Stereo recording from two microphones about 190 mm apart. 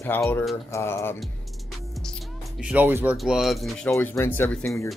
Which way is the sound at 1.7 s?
Centre (ahead or behind).